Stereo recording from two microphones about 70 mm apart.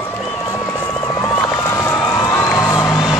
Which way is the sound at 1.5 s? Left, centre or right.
Left.